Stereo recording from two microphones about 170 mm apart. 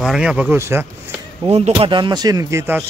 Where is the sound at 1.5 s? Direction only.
35° right (ahead or behind); by 2.8 s 15° right (ahead or behind).